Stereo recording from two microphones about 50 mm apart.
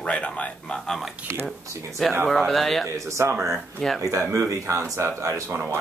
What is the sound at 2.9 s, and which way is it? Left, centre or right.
Speech, right.